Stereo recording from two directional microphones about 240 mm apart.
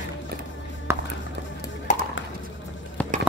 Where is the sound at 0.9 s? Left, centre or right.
Centre.